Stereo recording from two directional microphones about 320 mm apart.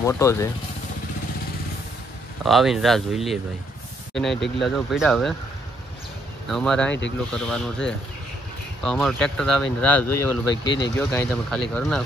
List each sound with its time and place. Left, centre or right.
0.0 s speech: centre
2.4 s speech: centre
6.5 s speech: centre
6.9 s speech: left
7.3 s speech: centre
10.6 s speech: left
11.0 s speech: centre